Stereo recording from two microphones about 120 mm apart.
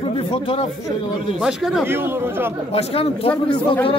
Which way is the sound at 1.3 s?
5° right (ahead or behind).